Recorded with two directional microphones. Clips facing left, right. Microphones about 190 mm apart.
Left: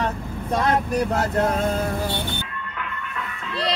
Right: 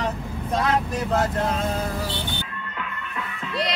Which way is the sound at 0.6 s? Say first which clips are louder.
Left 3 dB; 55° left (ahead or behind).